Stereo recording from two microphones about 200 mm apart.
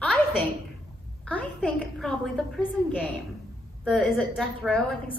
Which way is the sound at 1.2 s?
5° left (ahead or behind).